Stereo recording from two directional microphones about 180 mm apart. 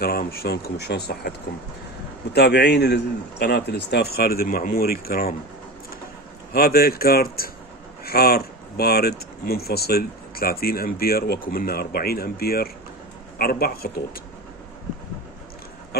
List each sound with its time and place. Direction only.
0.0 s speech: 60° left (ahead or behind)
2.3 s speech: 65° left (ahead or behind)
6.5 s speech: 60° left (ahead or behind)